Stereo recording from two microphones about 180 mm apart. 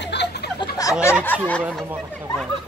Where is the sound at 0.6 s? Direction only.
20° left (ahead or behind).